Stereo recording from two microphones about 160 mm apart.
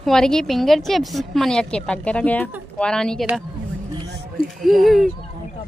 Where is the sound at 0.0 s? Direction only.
5° left (ahead or behind).